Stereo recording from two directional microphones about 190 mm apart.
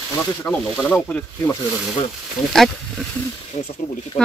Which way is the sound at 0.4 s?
10° left (ahead or behind).